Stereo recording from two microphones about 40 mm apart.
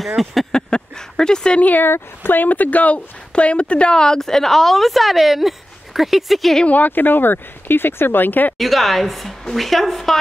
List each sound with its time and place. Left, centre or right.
0.2 s a woman's voice: centre
0.5 s a sound: left
1.8 s a woman's voice: left; by 6.5 s centre
6.7 s speech: left
8.5 s a woman's voice: centre